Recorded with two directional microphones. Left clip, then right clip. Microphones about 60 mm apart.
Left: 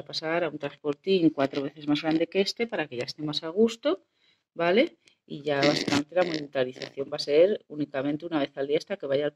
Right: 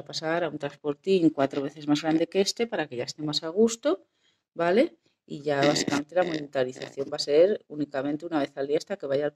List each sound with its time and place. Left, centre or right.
0.0 s speech: right
5.9 s speech: centre
6.5 s speech: right